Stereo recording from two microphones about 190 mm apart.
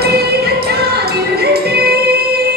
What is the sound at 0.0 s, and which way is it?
Music, 55° right (ahead or behind).